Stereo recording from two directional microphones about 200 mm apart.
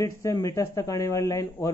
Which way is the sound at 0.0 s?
15° left (ahead or behind).